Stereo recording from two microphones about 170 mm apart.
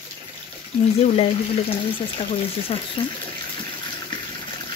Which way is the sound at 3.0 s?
35° left (ahead or behind).